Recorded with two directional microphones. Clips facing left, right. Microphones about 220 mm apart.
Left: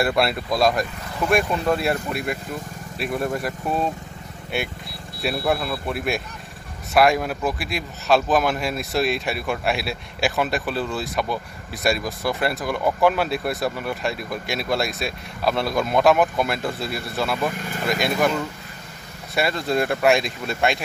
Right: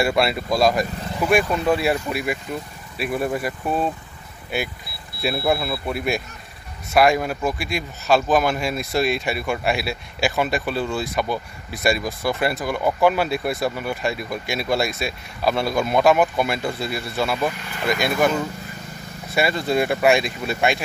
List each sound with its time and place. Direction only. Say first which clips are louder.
0.0 s speech: right 1 dB; centre (ahead or behind)